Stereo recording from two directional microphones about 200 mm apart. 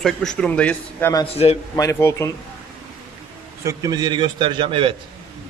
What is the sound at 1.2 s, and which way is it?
Speech, 30° left (ahead or behind).